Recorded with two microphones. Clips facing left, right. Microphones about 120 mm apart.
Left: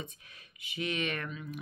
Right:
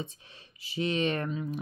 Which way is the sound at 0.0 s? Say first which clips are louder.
Right 5 dB; 30° right (ahead or behind).